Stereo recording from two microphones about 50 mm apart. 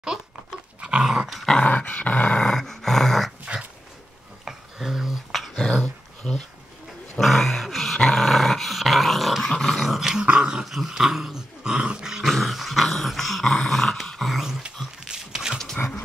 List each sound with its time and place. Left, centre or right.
0.7 s dog: centre
1.6 s dog: left
2.3 s dog: centre
4.5 s dog: centre
5.8 s a sound: centre
7.2 s dog: centre
9.8 s dog: centre
10.7 s dog: centre
12.2 s dog: centre
14.3 s a sound: centre